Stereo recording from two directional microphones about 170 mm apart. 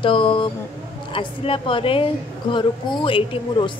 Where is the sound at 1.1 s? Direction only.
30° left (ahead or behind).